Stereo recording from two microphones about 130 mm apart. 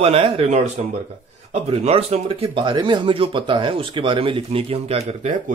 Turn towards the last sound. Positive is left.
turn(degrees=-55)  # may be behind; listen again after turning